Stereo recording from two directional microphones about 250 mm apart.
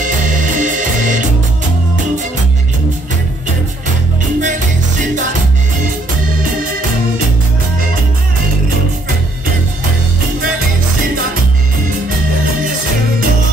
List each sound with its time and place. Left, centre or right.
0.6 s music: right